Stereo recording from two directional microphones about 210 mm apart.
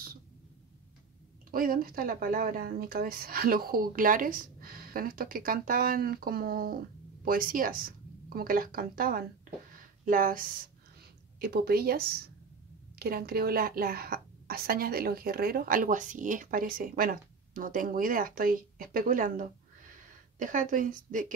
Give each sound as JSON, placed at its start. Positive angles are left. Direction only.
{"t": 1.5, "sound": "a woman's voice", "side_deg": -45}
{"t": 9.7, "sound": "a sound", "side_deg": -40}
{"t": 11.3, "sound": "a woman's voice", "side_deg": -45}
{"t": 13.0, "sound": "a woman's voice", "side_deg": -45}